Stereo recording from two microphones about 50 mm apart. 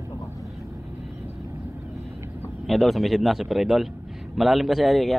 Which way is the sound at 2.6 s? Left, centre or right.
Centre.